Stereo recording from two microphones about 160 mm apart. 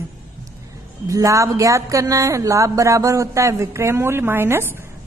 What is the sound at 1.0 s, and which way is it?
A woman's voice, 20° right (ahead or behind).